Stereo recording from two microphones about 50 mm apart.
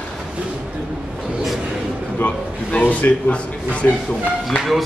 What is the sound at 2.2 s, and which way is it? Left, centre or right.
A man's voice, left.